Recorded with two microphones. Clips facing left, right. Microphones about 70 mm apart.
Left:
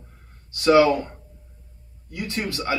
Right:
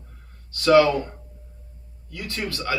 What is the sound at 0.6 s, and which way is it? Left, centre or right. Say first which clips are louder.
Speech: even; centre.